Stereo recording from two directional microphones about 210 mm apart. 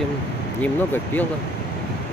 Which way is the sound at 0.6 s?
10° left (ahead or behind).